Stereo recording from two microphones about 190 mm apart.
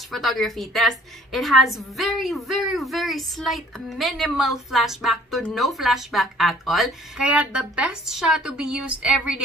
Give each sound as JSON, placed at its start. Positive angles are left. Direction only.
{"t": 0.1, "sound": "a woman's voice", "side_deg": 0}